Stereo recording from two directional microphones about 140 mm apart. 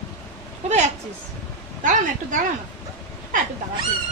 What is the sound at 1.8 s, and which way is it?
Speech, 65° right (ahead or behind).